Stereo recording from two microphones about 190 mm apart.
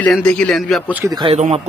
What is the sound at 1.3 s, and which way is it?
Speech, 35° right (ahead or behind).